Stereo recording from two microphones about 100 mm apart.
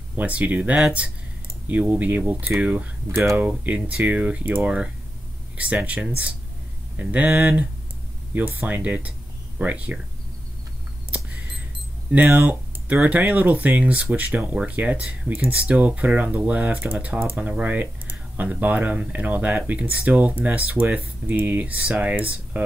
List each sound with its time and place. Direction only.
0.1 s speech: 15° right (ahead or behind)
12.1 s speech: 15° right (ahead or behind)